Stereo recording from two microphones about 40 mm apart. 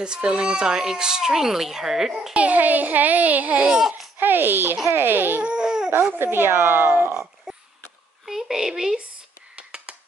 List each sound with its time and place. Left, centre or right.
0.0 s speech: right; by 2.1 s centre
2.3 s a child's voice: right
4.2 s a child's voice: right
5.4 s baby cry: right
6.1 s speech: right
7.5 s a sound: centre
8.3 s a woman's voice: centre
9.6 s a sound: right